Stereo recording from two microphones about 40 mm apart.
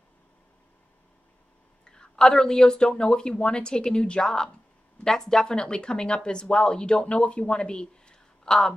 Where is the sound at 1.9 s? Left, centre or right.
Centre.